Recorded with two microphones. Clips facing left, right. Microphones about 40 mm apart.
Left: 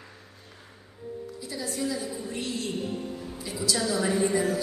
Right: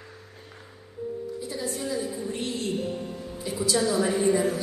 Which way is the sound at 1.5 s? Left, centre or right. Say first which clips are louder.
Right 1 dB; right.